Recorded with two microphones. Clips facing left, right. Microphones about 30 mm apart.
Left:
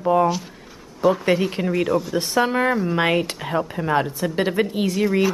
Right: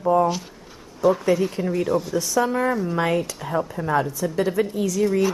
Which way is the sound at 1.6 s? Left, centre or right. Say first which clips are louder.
Left 2 dB; left.